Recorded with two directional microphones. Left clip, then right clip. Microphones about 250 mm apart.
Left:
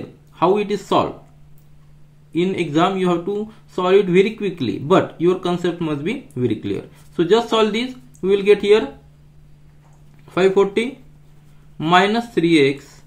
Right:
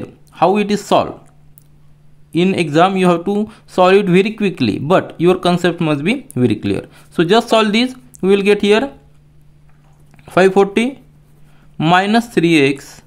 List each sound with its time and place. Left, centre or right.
0.3 s speech: right
2.3 s speech: right
10.2 s speech: right